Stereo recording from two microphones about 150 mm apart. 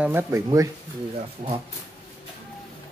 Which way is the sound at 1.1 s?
40° right (ahead or behind).